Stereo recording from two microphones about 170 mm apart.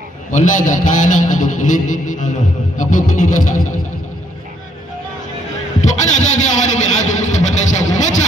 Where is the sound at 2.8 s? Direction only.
50° left (ahead or behind).